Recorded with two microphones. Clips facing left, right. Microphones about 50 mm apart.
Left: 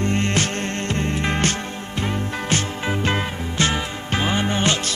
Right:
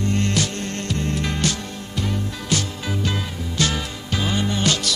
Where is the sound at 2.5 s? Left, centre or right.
Left.